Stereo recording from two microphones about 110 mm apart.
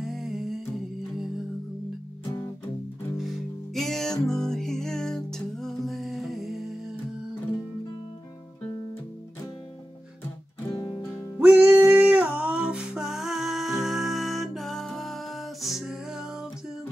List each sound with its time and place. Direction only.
0.0 s music: 5° right (ahead or behind)
3.2 s music: centre (ahead or behind)
10.7 s music: 30° left (ahead or behind)
11.3 s music: 15° right (ahead or behind)